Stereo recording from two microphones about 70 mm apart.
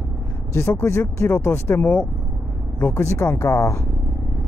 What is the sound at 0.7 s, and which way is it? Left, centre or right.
Speech, left.